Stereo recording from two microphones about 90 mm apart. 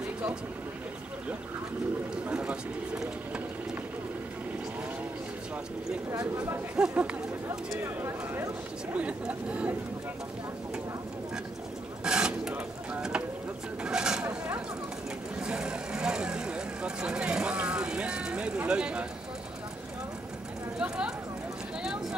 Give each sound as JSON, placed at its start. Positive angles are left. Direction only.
{"t": 2.2, "sound": "bird", "side_deg": -10}
{"t": 6.1, "sound": "speech", "side_deg": -40}
{"t": 6.8, "sound": "speech", "side_deg": -15}
{"t": 7.8, "sound": "speech", "side_deg": -30}
{"t": 8.9, "sound": "speech", "side_deg": -15}
{"t": 12.0, "sound": "filing", "side_deg": -10}
{"t": 13.8, "sound": "vehicle", "side_deg": -10}
{"t": 15.4, "sound": "vehicle", "side_deg": -10}
{"t": 20.8, "sound": "a sound", "side_deg": -10}